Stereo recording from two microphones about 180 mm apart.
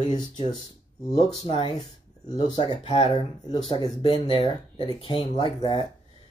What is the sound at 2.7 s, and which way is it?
Speech, 35° left (ahead or behind).